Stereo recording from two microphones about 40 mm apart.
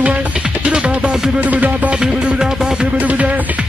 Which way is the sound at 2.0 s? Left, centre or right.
Centre.